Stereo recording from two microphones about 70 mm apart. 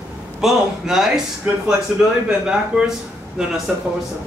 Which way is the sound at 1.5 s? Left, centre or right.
Centre.